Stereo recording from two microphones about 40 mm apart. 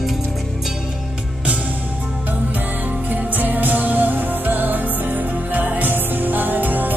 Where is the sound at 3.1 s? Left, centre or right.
Right.